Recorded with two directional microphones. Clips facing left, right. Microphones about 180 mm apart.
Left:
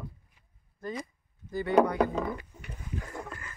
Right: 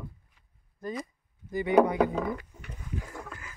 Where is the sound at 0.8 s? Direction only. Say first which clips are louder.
Right 1 dB; 15° right (ahead or behind).